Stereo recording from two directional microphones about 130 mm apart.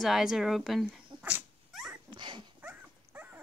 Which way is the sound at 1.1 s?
35° right (ahead or behind).